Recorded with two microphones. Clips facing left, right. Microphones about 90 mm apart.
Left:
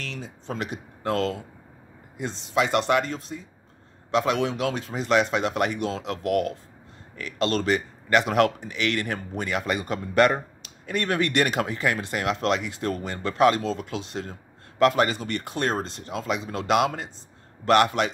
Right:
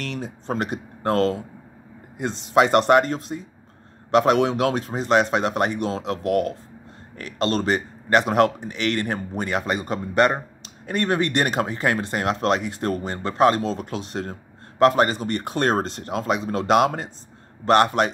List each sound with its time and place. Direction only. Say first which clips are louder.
0.0 s speech: right 6 dB; 55° right (ahead or behind)
2.1 s speech: right 6 dB; 60° right (ahead or behind); by 15.4 s 40° right (ahead or behind)
15.4 s speech: right 6 dB; 55° right (ahead or behind); by 18.1 s 40° right (ahead or behind)